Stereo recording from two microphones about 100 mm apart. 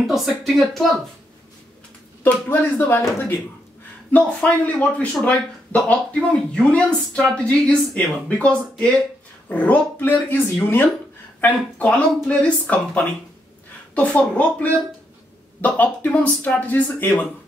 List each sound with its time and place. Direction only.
0.0 s speech: centre (ahead or behind)
2.2 s speech: 20° left (ahead or behind)